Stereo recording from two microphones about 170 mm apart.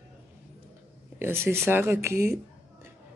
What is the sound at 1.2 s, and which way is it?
Speech, 15° right (ahead or behind).